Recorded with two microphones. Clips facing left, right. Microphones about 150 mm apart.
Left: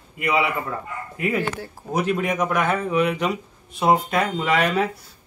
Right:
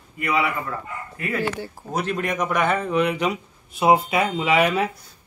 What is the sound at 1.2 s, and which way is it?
A man's voice, 20° left (ahead or behind).